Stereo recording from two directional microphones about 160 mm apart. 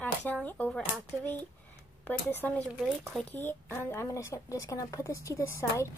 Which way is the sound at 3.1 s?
Centre (ahead or behind).